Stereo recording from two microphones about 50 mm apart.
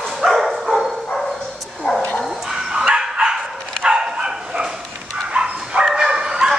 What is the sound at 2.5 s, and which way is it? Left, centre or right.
Dog, centre.